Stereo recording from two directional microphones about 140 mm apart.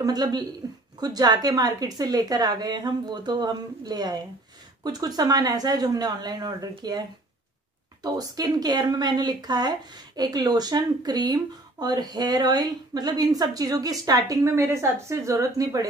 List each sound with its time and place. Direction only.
0.0 s speech: 30° right (ahead or behind)
8.0 s speech: 30° right (ahead or behind)